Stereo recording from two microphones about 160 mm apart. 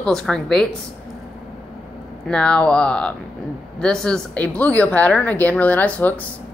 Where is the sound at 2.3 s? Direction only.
5° left (ahead or behind).